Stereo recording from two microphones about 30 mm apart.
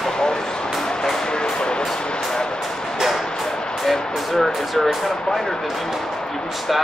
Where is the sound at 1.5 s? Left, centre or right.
Left.